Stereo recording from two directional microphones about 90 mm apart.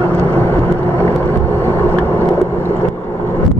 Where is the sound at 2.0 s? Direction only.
20° left (ahead or behind).